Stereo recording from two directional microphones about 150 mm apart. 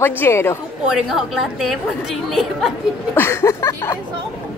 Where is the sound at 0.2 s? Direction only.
15° left (ahead or behind).